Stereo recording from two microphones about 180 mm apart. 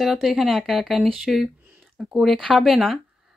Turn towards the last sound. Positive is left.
turn(degrees=0)  # may be behind; listen again after turning